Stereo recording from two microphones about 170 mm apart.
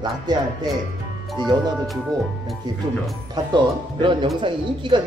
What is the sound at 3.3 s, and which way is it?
Speech, 25° right (ahead or behind).